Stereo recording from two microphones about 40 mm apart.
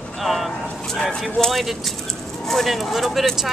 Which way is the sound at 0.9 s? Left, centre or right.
Centre.